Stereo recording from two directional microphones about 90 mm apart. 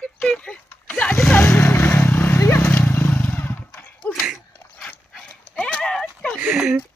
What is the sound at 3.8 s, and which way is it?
Horse, 15° left (ahead or behind).